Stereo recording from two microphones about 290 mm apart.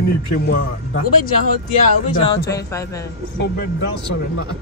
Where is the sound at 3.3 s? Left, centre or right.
Left.